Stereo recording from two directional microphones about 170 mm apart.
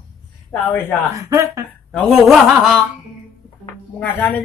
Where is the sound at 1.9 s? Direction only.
Centre (ahead or behind).